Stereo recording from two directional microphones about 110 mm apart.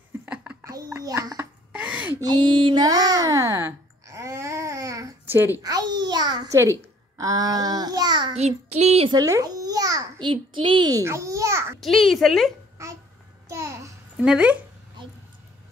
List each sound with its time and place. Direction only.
0.2 s a sound: 10° right (ahead or behind)
0.7 s a sound: 30° right (ahead or behind)
1.7 s a sound: 10° right (ahead or behind)
2.2 s a sound: 45° right (ahead or behind)
5.2 s a woman's voice: 20° right (ahead or behind)
5.6 s babbling: 35° right (ahead or behind)
6.6 s a child's voice: 30° right (ahead or behind)
8.4 s child singing: 80° right
9.1 s babbling: 30° right (ahead or behind)
10.2 s a child's voice: 50° right (ahead or behind)
10.9 s babbling: 30° right (ahead or behind)
11.8 s a child's voice: centre (ahead or behind)
12.8 s babbling: 25° right (ahead or behind)
14.1 s speech: 10° right (ahead or behind)